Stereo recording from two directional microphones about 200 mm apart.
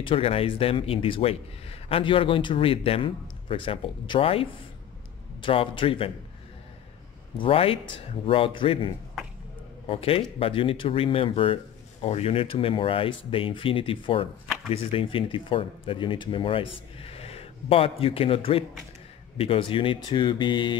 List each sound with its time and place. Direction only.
0.0 s a man's voice: 30° left (ahead or behind)
7.3 s a man's voice: 25° left (ahead or behind)